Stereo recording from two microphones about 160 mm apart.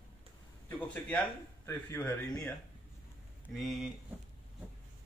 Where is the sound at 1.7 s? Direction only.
15° left (ahead or behind).